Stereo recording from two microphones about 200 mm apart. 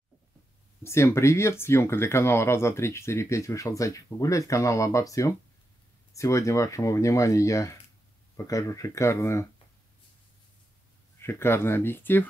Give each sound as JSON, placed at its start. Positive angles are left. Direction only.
{"t": 0.8, "sound": "speech", "side_deg": 15}
{"t": 11.1, "sound": "speech", "side_deg": 10}